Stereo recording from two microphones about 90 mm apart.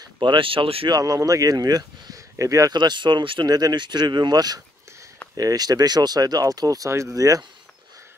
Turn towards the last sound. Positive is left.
turn(degrees=-40)  # may be behind; listen again after turning